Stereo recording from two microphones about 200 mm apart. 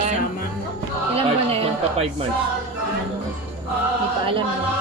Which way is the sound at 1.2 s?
30° right (ahead or behind).